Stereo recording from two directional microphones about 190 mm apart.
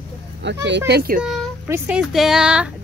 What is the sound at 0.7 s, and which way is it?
Speech, 65° right (ahead or behind).